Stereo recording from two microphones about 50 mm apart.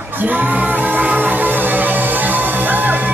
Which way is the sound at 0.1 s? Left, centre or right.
Right.